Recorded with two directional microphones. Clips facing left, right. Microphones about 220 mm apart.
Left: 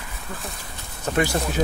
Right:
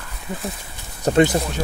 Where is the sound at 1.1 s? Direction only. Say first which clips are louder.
Right 7 dB; 35° right (ahead or behind).